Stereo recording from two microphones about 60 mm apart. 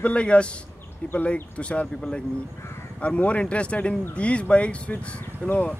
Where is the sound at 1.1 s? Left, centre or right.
Left.